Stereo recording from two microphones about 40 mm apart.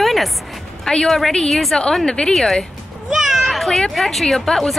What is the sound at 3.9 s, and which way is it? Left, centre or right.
Speech, centre.